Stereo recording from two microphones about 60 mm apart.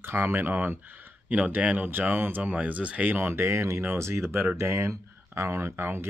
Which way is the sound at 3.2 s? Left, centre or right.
Right.